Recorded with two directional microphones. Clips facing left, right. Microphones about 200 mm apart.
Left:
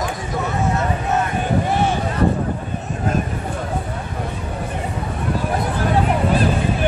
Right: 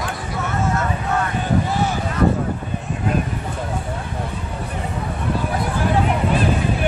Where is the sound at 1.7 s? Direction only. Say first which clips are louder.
Left 2 dB; 25° left (ahead or behind).